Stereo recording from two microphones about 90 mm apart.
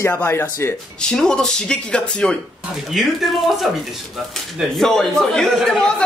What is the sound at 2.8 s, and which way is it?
Speech, centre (ahead or behind).